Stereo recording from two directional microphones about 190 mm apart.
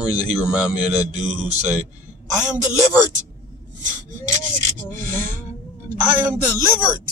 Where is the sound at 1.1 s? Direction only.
40° right (ahead or behind).